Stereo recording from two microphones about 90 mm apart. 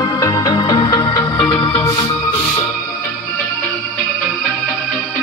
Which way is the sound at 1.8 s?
35° left (ahead or behind).